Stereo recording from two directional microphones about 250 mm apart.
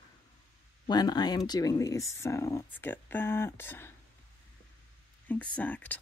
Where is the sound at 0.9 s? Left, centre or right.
Centre.